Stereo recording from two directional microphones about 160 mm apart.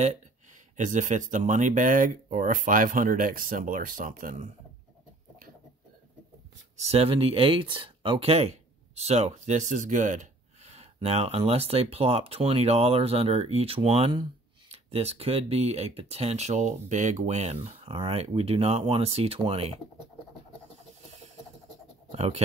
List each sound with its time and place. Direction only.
0.0 s speech: 50° right (ahead or behind)
6.8 s speech: 40° right (ahead or behind)
22.1 s speech: 40° right (ahead or behind)